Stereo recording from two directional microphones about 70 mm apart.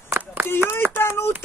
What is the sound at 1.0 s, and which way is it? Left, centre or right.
Speech, left.